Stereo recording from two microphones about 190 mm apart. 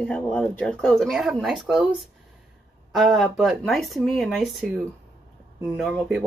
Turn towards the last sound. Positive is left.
turn(degrees=0)  # may be behind; listen again after turning